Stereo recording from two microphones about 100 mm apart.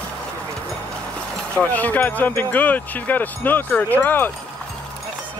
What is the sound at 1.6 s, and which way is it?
Speech, 15° left (ahead or behind).